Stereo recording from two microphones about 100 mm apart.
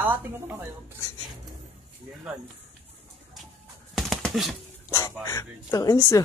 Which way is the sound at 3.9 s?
Centre (ahead or behind).